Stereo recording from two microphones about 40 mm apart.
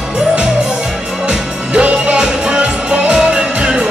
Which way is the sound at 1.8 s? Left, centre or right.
Right.